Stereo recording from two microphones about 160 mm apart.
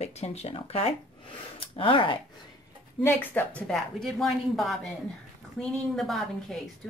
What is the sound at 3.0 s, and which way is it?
A woman's voice, 10° left (ahead or behind).